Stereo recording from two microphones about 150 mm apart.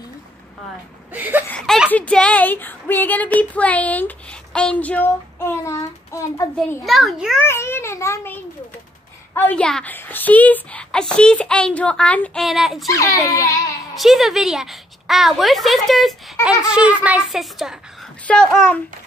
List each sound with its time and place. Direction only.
1.1 s a child's voice: 10° right (ahead or behind)
1.9 s speech: 10° left (ahead or behind)
5.7 s child singing: 20° left (ahead or behind)
6.8 s a woman's voice: centre (ahead or behind)
7.4 s a woman's voice: 15° left (ahead or behind); by 12.8 s centre (ahead or behind)
12.8 s child singing: 20° left (ahead or behind)
13.9 s a woman's voice: centre (ahead or behind)